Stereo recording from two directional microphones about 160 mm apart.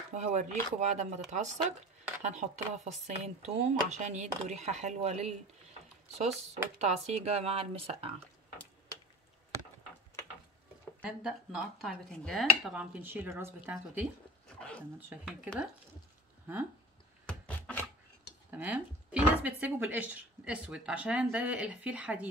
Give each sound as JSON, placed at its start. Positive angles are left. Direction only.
{"t": 0.1, "sound": "speech", "side_deg": -50}
{"t": 11.0, "sound": "speech", "side_deg": -5}
{"t": 15.0, "sound": "speech", "side_deg": -10}
{"t": 17.3, "sound": "a sound", "side_deg": 10}
{"t": 18.5, "sound": "speech", "side_deg": -10}